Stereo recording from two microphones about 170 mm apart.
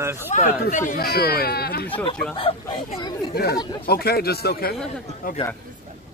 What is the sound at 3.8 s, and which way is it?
Speech, 65° left (ahead or behind).